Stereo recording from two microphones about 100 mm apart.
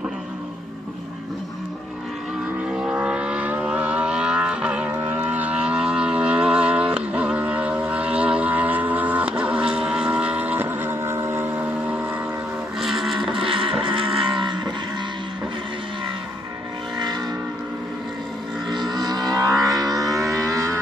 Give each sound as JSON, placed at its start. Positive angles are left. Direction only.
{"t": 2.7, "sound": "vehicle", "side_deg": -10}
{"t": 12.8, "sound": "vehicle", "side_deg": 0}
{"t": 13.4, "sound": "vehicle", "side_deg": -60}
{"t": 13.8, "sound": "cattle", "side_deg": -60}
{"t": 14.1, "sound": "cattle", "side_deg": 0}
{"t": 18.7, "sound": "a sound", "side_deg": -45}